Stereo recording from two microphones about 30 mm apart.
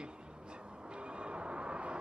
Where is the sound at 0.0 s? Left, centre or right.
Right.